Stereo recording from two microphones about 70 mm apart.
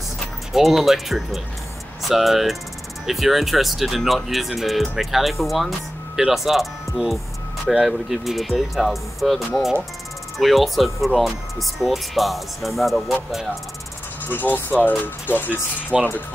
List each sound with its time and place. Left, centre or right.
0.5 s speech: centre
7.8 s speech: centre
14.2 s speech: left
15.9 s speech: centre